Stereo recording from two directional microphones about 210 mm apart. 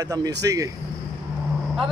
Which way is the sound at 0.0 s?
15° right (ahead or behind).